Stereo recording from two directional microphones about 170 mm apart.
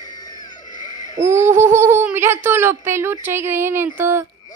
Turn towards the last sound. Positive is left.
turn(degrees=-15)  # may be behind; listen again after turning